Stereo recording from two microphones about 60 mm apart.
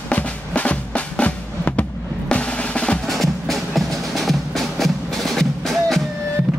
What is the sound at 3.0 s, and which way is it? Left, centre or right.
Music, centre.